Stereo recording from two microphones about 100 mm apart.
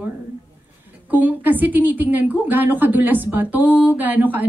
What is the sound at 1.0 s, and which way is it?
A woman's voice, 15° right (ahead or behind).